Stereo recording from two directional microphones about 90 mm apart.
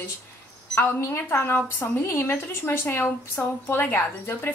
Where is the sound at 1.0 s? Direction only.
25° left (ahead or behind).